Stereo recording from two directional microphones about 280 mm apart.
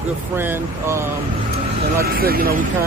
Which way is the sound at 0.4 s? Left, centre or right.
Centre.